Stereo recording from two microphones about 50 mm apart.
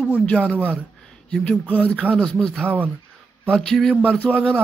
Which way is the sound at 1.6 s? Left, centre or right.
Left.